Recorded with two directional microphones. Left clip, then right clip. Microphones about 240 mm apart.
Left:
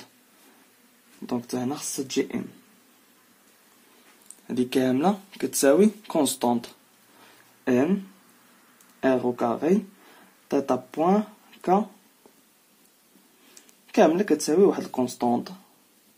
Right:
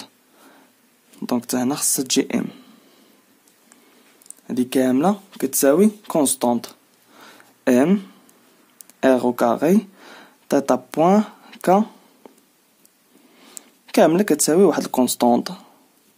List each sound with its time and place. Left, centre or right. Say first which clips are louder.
1.2 s speech: right 7 dB; right
4.5 s speech: right 4 dB; right
7.2 s a sound: right 9 dB; right
9.0 s speech: right 7 dB; right
13.6 s speech: right 4 dB; right